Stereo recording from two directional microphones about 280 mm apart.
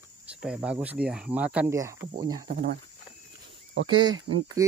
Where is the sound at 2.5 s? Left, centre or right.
Right.